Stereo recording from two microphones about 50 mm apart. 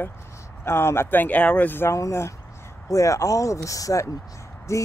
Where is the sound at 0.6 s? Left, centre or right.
Left.